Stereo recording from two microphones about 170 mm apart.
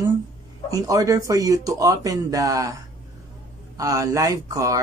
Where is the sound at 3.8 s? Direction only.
20° right (ahead or behind).